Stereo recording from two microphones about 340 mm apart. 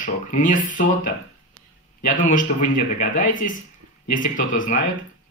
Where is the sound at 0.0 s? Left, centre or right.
Left.